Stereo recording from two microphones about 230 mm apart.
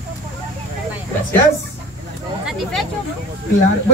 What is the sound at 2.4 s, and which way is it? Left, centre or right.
Speech, centre.